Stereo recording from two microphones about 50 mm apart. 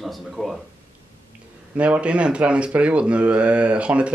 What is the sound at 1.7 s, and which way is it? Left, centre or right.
Speech, right.